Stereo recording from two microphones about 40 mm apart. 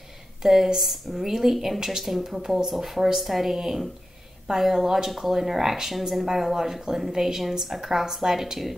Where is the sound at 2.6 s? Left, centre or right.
Centre.